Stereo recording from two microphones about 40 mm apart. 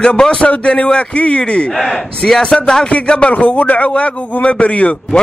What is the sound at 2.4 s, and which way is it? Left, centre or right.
Speech, left.